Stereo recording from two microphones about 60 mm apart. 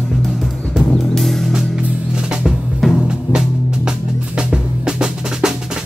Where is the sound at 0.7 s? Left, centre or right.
Centre.